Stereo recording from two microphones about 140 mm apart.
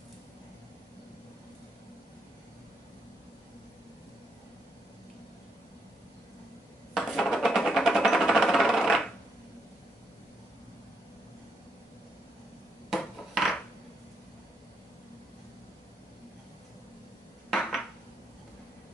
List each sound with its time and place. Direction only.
6.9 s sewing machine: centre (ahead or behind)
12.9 s a sound: centre (ahead or behind)
17.5 s dishes: centre (ahead or behind)